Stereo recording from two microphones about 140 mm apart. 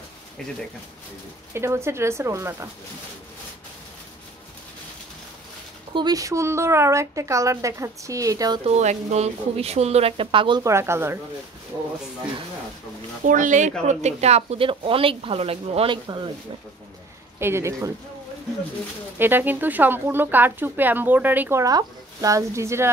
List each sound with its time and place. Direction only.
1.5 s speech: 20° right (ahead or behind)
5.9 s speech: 25° right (ahead or behind)
8.6 s speech: 55° right (ahead or behind); by 10.6 s 35° right (ahead or behind)
10.6 s speech: 20° right (ahead or behind)
13.3 s speech: 65° right (ahead or behind); by 16.3 s 35° right (ahead or behind)
17.4 s speech: 20° right (ahead or behind)
19.1 s speech: 15° right (ahead or behind)